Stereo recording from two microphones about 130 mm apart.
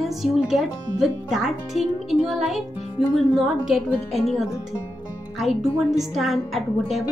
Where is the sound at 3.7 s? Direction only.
Centre (ahead or behind).